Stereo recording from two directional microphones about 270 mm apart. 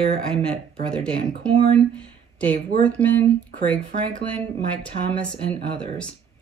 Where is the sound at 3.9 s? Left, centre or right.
Right.